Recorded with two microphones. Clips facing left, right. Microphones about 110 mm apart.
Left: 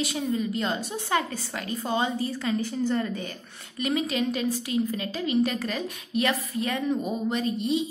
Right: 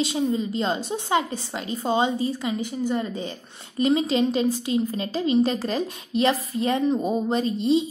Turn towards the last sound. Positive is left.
turn(degrees=-30)  # may be behind; listen again after turning